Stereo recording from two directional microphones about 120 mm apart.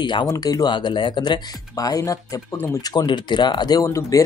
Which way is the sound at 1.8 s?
30° left (ahead or behind).